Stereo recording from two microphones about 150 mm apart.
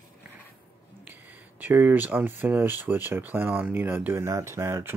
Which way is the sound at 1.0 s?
10° right (ahead or behind).